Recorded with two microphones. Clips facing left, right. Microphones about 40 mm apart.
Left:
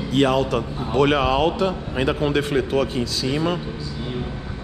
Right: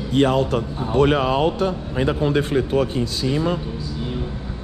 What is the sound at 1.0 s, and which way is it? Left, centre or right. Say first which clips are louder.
Speech: left 1 dB; left.